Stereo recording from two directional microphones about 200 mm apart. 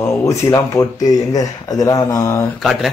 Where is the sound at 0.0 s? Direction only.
15° left (ahead or behind).